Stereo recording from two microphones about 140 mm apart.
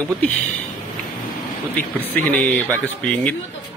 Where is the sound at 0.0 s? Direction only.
10° left (ahead or behind).